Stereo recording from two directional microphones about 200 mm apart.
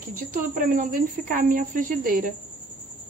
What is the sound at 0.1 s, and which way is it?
A woman's voice, 45° right (ahead or behind).